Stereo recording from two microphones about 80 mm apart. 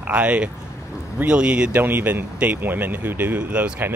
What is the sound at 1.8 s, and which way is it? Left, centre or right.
Speech, right.